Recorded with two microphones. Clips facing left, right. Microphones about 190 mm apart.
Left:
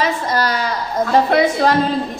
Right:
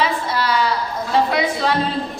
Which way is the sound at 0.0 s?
45° left (ahead or behind).